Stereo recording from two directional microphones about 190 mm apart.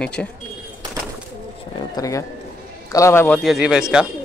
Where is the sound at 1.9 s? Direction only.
15° left (ahead or behind); by 4.1 s 5° right (ahead or behind).